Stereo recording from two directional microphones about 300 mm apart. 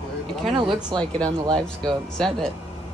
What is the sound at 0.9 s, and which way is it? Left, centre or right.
Speech, centre.